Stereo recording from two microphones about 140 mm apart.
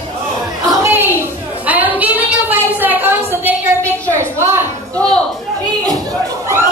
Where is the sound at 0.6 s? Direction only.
20° right (ahead or behind).